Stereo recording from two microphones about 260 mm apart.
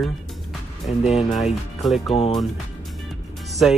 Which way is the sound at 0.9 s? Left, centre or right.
Left.